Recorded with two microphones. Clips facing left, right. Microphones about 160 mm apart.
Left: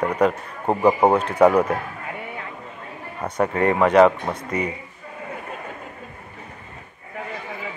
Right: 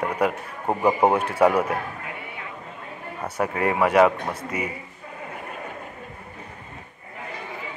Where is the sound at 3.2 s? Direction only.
10° right (ahead or behind).